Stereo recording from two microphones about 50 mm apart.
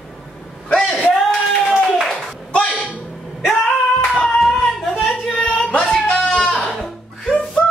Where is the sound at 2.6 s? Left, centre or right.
Left.